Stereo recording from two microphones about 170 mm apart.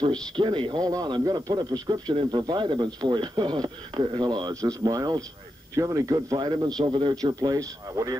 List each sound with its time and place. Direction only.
0.4 s speech: 30° right (ahead or behind)